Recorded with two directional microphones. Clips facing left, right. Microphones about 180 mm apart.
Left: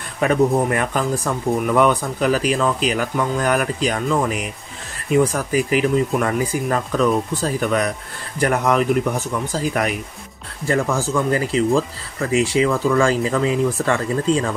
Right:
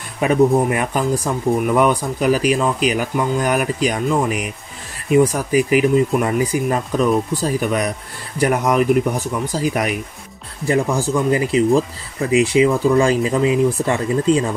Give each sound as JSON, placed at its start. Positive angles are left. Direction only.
{"t": 0.2, "sound": "speech", "side_deg": -15}